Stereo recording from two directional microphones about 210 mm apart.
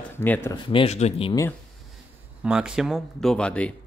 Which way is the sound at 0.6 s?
25° left (ahead or behind).